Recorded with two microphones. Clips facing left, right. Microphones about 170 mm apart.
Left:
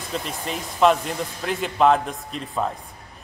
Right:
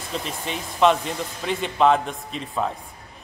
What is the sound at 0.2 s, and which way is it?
A man's voice, centre (ahead or behind).